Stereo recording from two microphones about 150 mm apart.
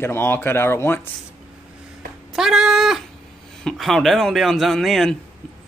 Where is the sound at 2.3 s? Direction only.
5° right (ahead or behind).